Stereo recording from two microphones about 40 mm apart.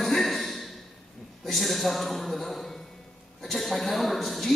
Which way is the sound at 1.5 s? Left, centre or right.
Centre.